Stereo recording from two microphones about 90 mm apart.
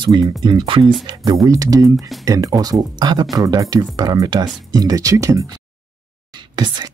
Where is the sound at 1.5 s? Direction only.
40° right (ahead or behind).